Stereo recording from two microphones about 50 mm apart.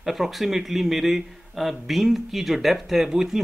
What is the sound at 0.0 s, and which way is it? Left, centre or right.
Speech, centre.